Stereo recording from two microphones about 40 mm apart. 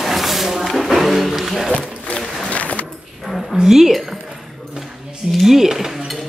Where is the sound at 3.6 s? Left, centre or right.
Centre.